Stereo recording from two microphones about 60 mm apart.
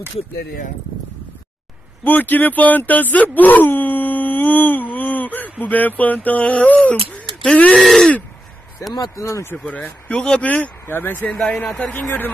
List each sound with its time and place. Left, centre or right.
2.0 s speech: left
7.5 s a sound: centre
7.8 s a sound: centre
8.9 s speech: left
9.7 s speech: left
10.0 s speech: centre
10.4 s speech: left